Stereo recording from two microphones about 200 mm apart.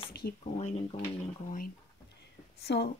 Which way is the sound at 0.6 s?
35° left (ahead or behind).